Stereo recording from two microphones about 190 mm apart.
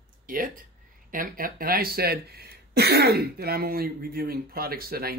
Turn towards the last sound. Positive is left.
turn(degrees=-55)  # may be behind; listen again after turning